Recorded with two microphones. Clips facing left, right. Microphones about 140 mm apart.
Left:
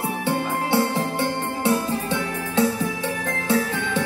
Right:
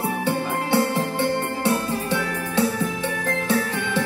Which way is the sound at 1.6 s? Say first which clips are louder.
Left 1 dB; 15° left (ahead or behind).